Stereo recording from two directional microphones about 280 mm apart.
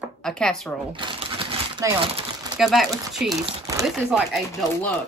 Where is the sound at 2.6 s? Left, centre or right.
Centre.